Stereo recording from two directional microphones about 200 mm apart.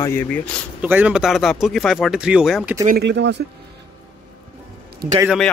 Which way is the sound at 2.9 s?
60° right (ahead or behind).